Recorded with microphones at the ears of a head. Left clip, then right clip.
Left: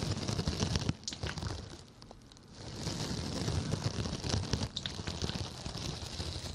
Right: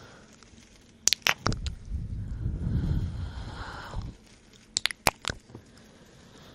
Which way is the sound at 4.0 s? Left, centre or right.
Left.